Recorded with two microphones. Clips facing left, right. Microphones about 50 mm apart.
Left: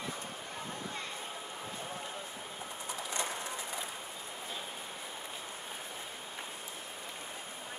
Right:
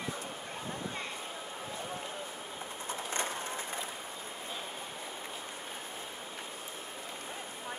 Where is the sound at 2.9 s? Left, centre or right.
Right.